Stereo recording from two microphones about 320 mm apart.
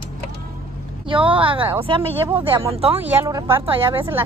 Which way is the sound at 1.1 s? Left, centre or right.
Centre.